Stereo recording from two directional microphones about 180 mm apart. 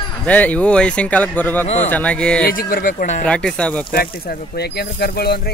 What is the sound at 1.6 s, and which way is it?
Speech, 35° left (ahead or behind).